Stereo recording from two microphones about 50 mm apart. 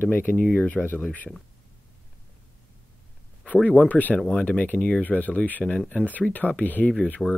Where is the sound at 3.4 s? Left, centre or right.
Left.